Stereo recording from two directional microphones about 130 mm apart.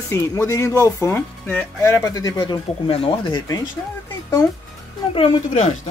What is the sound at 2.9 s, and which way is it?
Speech, 45° left (ahead or behind).